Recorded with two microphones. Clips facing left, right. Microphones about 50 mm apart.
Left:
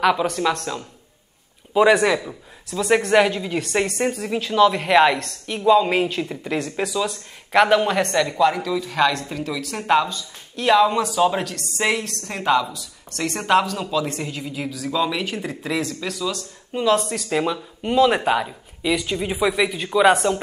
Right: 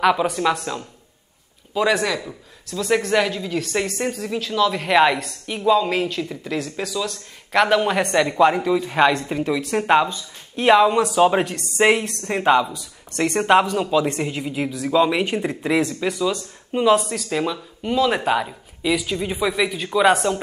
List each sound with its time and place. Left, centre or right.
0.0 s speech: centre
1.7 s speech: centre
17.1 s speech: centre